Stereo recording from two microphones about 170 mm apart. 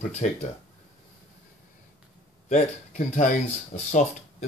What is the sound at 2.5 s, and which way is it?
Speech, 45° left (ahead or behind).